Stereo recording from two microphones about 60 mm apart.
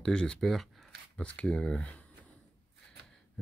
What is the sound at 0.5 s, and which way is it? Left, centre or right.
Speech, centre.